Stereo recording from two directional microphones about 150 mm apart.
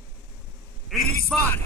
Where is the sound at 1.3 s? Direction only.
15° left (ahead or behind).